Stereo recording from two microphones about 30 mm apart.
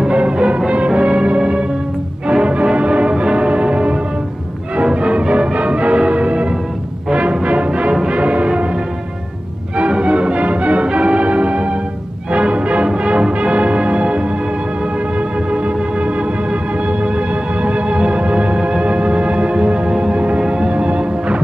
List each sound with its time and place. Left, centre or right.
0.1 s music: right
9.8 s music: right
20.7 s music: right